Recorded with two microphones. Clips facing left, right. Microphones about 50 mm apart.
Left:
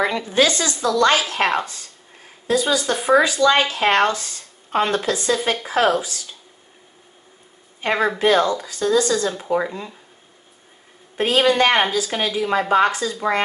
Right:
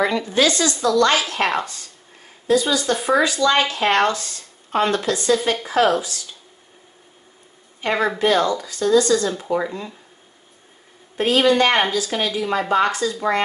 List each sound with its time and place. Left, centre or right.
0.0 s speech: left
7.8 s a woman's voice: centre
11.2 s speech: centre